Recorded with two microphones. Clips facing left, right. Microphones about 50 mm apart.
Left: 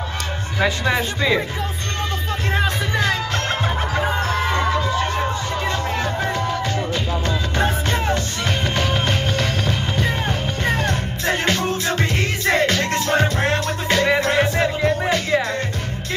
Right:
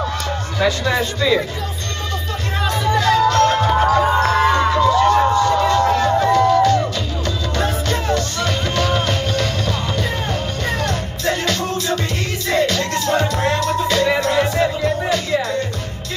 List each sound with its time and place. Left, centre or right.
0.6 s a man's voice: left
2.5 s music: left
4.8 s music: left
5.1 s music: right
6.3 s music: left